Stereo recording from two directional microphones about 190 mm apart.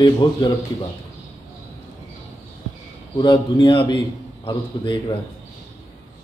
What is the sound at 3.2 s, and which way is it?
Speech, 25° left (ahead or behind).